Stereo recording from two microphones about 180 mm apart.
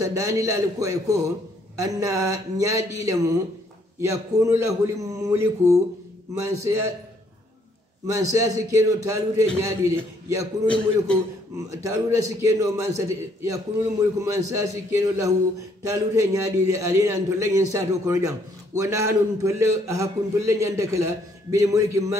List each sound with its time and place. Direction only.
0.0 s a man's voice: 15° right (ahead or behind)
8.1 s a man's voice: 15° right (ahead or behind)
11.5 s a man's voice: 15° right (ahead or behind)